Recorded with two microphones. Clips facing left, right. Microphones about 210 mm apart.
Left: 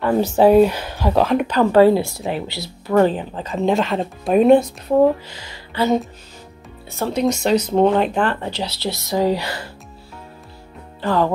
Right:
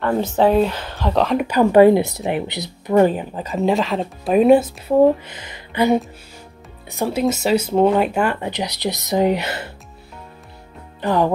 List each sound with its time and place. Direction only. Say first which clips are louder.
0.0 s speech: left 2 dB; 10° left (ahead or behind)
1.5 s speech: right 2 dB; 15° right (ahead or behind)
5.3 s speech: right 2 dB; 20° right (ahead or behind)
11.0 s speech: right 1 dB; 15° right (ahead or behind)